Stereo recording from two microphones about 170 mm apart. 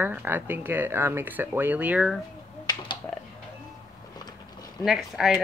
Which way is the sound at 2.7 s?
25° left (ahead or behind).